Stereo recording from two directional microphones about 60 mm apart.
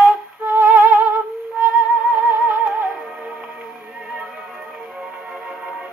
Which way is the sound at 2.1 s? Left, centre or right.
Right.